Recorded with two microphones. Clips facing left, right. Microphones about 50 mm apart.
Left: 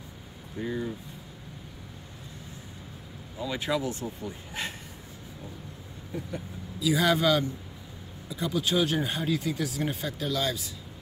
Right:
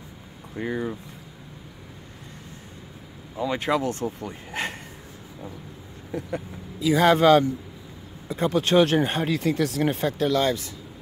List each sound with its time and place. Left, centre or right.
0.6 s speech: right
3.3 s speech: right
6.8 s speech: right
10.0 s speech: right